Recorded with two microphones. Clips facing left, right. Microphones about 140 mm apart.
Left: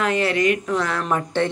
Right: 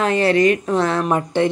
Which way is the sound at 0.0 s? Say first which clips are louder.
Right 4 dB; 35° right (ahead or behind).